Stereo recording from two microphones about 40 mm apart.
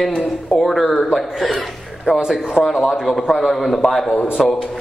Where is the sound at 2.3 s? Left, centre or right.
Centre.